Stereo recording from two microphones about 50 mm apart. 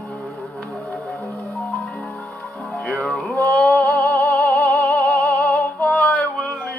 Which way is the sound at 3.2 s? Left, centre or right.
Left.